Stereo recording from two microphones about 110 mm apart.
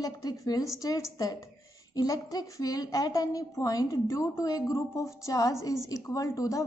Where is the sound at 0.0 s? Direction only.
35° left (ahead or behind).